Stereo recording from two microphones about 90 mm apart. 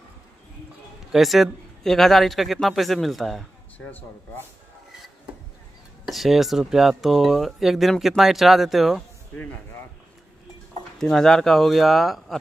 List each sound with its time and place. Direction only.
1.1 s speech: centre (ahead or behind)
3.7 s speech: 15° left (ahead or behind)
6.0 s speech: centre (ahead or behind)
9.3 s speech: 20° left (ahead or behind)
11.0 s speech: 5° left (ahead or behind)